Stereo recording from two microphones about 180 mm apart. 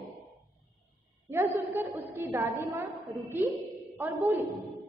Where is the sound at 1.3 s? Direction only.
10° right (ahead or behind).